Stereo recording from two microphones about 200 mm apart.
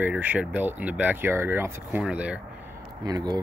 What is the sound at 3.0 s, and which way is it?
Speech, 20° right (ahead or behind).